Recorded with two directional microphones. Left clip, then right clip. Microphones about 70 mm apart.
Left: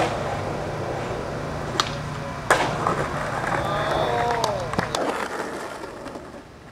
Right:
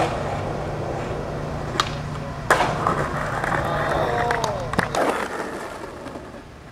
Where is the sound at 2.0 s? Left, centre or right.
Left.